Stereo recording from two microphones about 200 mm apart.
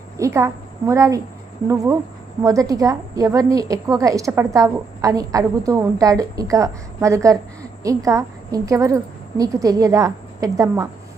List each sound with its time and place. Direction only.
0.2 s a woman's voice: 15° right (ahead or behind)